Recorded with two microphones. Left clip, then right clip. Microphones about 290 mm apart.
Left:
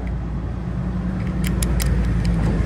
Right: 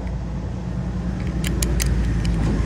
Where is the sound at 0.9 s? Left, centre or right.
Right.